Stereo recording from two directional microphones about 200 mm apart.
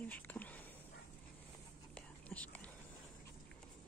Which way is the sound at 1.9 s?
5° left (ahead or behind).